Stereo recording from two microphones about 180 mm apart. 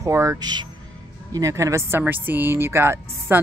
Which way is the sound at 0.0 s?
15° right (ahead or behind).